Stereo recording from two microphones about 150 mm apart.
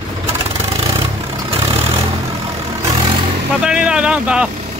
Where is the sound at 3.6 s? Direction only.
5° right (ahead or behind).